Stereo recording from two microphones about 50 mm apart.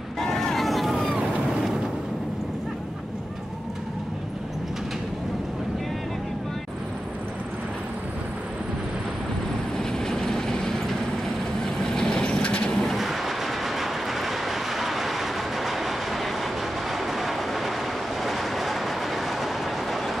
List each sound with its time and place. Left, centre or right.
0.2 s vehicle: centre
9.8 s train: centre
11.6 s vehicle: centre
12.8 s train: centre